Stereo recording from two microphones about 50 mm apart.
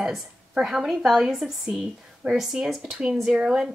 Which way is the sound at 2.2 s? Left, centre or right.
Right.